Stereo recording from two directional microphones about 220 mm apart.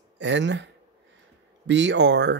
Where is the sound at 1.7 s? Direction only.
55° right (ahead or behind).